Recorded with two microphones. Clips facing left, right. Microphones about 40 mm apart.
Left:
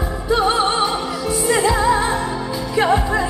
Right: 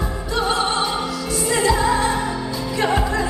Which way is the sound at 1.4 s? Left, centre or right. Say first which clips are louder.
Left 2 dB; centre.